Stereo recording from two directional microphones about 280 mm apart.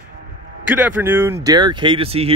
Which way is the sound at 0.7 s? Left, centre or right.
Centre.